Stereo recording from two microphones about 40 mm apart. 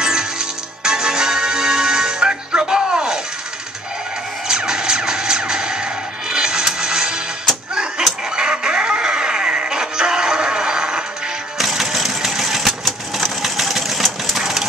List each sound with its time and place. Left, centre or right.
0.0 s music: centre
4.5 s music: centre
8.4 s music: right
11.5 s a sound: centre
13.4 s sewing machine: centre
14.4 s a sound: centre